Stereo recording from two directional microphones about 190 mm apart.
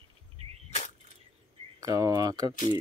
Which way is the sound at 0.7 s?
35° left (ahead or behind).